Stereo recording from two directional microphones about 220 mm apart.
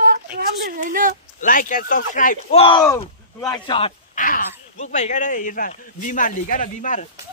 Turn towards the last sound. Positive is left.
turn(degrees=35)  # may be behind; listen again after turning